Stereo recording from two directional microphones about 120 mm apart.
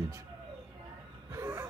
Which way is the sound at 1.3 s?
25° right (ahead or behind).